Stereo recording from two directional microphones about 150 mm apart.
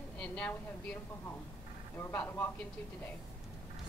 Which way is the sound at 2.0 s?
15° left (ahead or behind).